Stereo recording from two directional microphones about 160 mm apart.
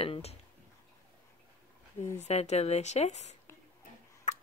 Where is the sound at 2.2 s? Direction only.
45° left (ahead or behind).